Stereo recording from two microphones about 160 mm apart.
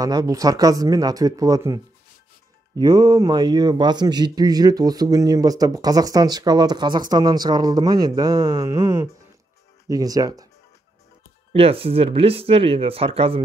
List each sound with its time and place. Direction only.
0.0 s a man's voice: 25° right (ahead or behind)
2.8 s a man's voice: 25° right (ahead or behind)
11.5 s speech: 35° right (ahead or behind)